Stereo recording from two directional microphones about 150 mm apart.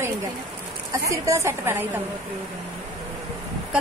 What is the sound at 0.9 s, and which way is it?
Speech, 20° right (ahead or behind).